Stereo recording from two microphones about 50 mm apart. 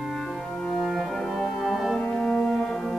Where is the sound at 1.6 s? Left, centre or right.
Centre.